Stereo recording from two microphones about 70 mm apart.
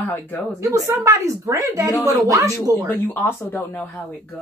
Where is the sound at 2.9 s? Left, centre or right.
Left.